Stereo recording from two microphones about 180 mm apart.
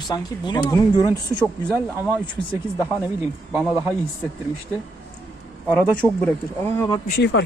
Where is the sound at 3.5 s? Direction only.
15° right (ahead or behind).